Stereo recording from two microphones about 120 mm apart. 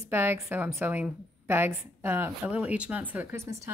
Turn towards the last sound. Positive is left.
turn(degrees=-25)  # may be behind; listen again after turning